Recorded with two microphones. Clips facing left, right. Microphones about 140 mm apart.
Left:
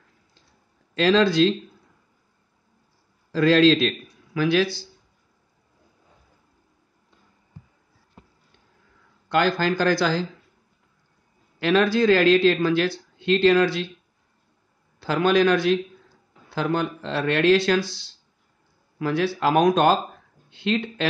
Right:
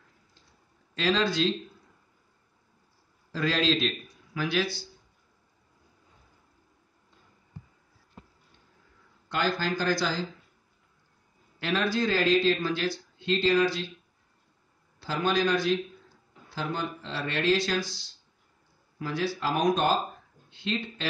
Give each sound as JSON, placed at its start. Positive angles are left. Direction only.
{"t": 0.9, "sound": "speech", "side_deg": 90}
{"t": 3.3, "sound": "speech", "side_deg": 90}
{"t": 9.3, "sound": "speech", "side_deg": 70}
{"t": 11.6, "sound": "speech", "side_deg": 80}
{"t": 15.0, "sound": "speech", "side_deg": 70}